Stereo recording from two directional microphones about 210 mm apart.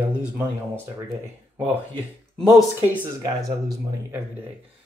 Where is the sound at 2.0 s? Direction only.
5° left (ahead or behind).